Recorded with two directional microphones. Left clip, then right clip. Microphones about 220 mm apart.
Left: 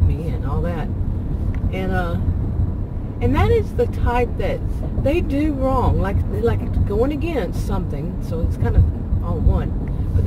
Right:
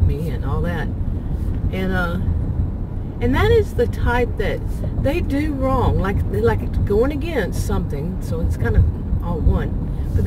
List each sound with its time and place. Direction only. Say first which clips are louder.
1.8 s vehicle: right 1 dB; 20° right (ahead or behind)
3.2 s speech: right 2 dB; 20° right (ahead or behind)